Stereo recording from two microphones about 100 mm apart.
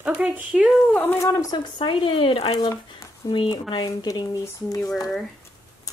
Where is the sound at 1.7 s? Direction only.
55° left (ahead or behind); by 2.6 s 75° left (ahead or behind).